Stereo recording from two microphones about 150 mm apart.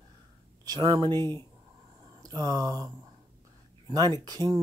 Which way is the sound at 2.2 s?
25° right (ahead or behind).